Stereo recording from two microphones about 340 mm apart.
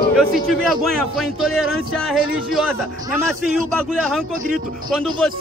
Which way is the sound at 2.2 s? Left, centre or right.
Right.